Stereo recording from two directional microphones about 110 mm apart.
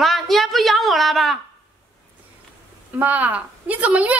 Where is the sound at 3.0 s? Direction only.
15° right (ahead or behind).